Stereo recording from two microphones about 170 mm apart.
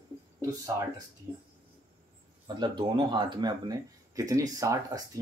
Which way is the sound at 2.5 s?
25° right (ahead or behind).